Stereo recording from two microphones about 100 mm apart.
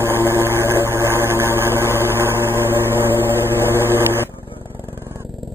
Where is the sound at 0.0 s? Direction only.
25° right (ahead or behind).